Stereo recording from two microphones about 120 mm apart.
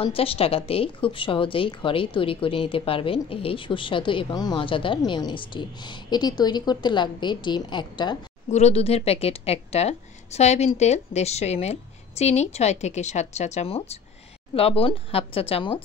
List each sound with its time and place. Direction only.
0.0 s a woman's voice: 50° left (ahead or behind)
8.5 s a woman's voice: 65° left (ahead or behind); by 15.8 s 50° left (ahead or behind)